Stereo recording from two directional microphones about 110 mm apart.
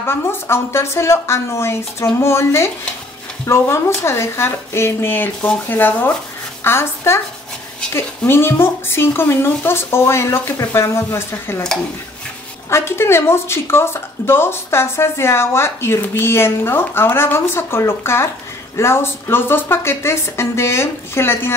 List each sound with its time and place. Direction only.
0.0 s speech: 20° left (ahead or behind)
12.6 s speech: 25° left (ahead or behind)